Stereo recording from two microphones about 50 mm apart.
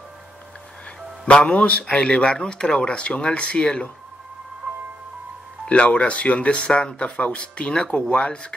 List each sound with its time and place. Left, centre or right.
1.2 s speech: left
5.7 s speech: left